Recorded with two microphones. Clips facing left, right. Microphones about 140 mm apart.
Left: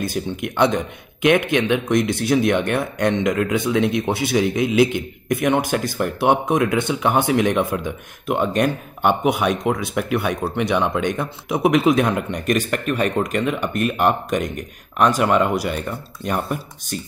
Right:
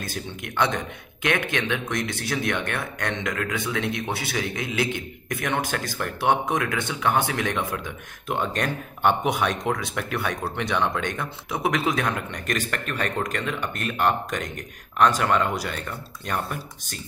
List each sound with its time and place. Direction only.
0.0 s speech: 15° left (ahead or behind)